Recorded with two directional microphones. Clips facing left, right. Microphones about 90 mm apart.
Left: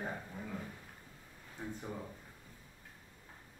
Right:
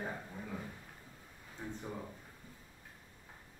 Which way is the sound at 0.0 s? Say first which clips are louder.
Even; centre (ahead or behind).